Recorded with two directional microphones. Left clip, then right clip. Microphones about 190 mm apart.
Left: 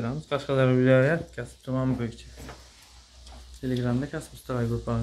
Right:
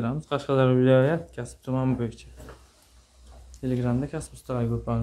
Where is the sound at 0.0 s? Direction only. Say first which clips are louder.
Right 1 dB; 15° right (ahead or behind).